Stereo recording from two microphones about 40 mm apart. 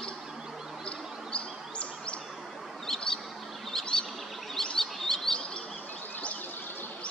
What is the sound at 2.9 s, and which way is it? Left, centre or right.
Bird, left.